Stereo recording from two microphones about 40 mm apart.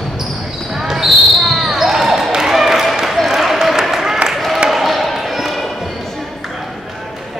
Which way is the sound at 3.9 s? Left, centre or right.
Centre.